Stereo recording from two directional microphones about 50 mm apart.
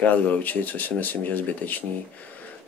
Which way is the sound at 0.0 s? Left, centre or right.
Left.